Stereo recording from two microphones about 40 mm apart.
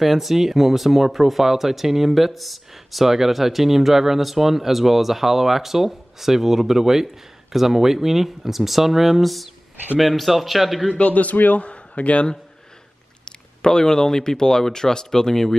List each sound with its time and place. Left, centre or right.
0.0 s a man's voice: centre
11.0 s a man's voice: left
11.6 s a man's voice: left
13.2 s speech: centre